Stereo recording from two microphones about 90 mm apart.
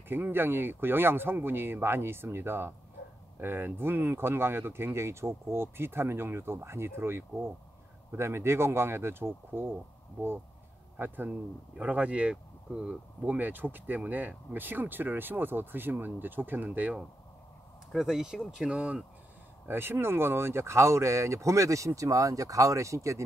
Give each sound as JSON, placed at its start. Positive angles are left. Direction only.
{"t": 0.1, "sound": "speech", "side_deg": -25}
{"t": 11.0, "sound": "speech", "side_deg": -20}
{"t": 17.9, "sound": "speech", "side_deg": -5}
{"t": 19.7, "sound": "speech", "side_deg": -25}